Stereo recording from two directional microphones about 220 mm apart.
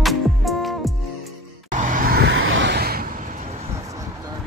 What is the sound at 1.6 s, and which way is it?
Vehicle, 35° right (ahead or behind).